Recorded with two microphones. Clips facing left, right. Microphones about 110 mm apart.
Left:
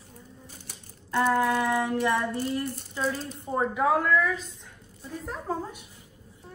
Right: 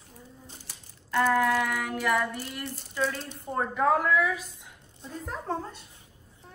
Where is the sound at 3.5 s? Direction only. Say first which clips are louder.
Left 1 dB; 5° left (ahead or behind).